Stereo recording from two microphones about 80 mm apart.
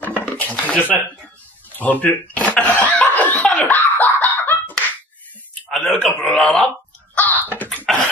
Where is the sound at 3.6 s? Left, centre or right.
Left.